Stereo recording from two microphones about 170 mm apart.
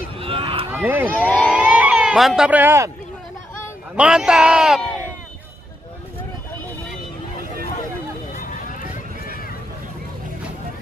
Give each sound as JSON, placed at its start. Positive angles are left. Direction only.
{"t": 0.2, "sound": "run", "side_deg": -35}
{"t": 0.7, "sound": "speech", "side_deg": -10}
{"t": 1.5, "sound": "sheep", "side_deg": -5}
{"t": 3.9, "sound": "a man's voice", "side_deg": -5}
{"t": 8.4, "sound": "vehicle", "side_deg": 50}